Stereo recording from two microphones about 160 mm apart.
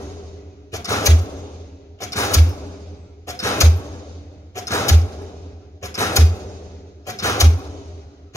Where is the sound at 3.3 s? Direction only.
20° left (ahead or behind).